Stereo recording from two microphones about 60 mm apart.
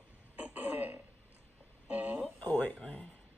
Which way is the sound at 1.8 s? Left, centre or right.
Right.